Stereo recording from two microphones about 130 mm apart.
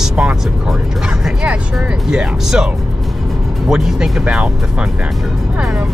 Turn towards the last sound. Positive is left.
turn(degrees=-5)  # may be behind; listen again after turning